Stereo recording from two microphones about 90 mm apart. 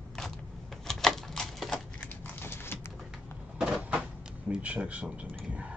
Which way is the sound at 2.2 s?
25° left (ahead or behind).